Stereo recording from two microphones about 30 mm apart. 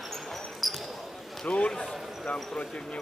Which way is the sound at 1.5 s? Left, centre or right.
Left.